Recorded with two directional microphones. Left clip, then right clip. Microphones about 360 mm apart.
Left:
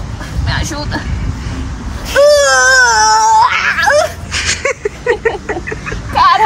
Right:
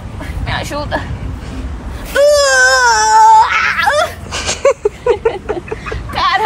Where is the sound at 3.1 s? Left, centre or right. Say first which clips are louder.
Right 2 dB; centre.